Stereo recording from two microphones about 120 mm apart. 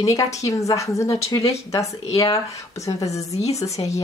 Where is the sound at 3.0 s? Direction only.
25° left (ahead or behind).